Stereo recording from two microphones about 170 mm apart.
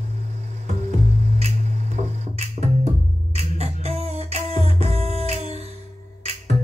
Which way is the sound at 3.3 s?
40° right (ahead or behind).